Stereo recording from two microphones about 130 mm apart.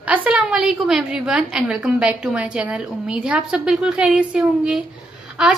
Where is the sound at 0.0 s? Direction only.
10° right (ahead or behind).